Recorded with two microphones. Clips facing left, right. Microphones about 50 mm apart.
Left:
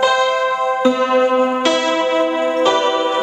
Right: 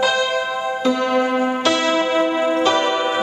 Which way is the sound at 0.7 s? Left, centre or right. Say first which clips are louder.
Left 3 dB; left.